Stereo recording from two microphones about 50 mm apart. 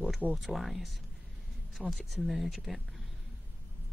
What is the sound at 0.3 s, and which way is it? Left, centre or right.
Speech, centre.